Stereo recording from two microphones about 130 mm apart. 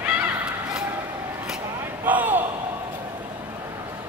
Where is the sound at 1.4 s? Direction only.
10° right (ahead or behind).